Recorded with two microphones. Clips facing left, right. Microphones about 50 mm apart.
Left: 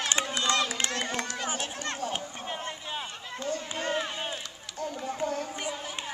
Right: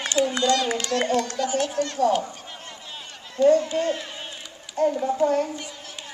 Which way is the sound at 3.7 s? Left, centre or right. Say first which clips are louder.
Right 6 dB; left.